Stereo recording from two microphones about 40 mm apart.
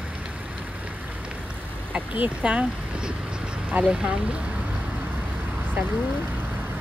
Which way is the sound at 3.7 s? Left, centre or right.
Right.